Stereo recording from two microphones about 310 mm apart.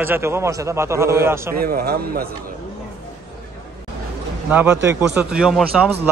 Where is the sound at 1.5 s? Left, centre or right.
Right.